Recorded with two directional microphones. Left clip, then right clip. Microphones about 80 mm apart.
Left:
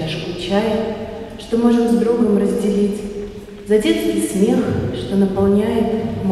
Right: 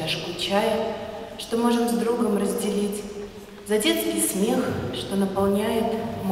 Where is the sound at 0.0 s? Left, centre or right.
Right.